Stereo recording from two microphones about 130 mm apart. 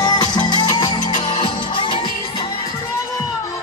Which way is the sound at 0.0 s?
35° left (ahead or behind).